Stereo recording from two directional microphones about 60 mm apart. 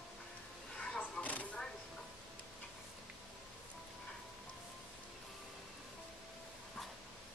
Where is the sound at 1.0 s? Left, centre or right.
Left.